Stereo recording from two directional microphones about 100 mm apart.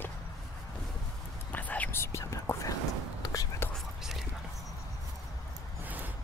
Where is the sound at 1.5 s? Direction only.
15° left (ahead or behind).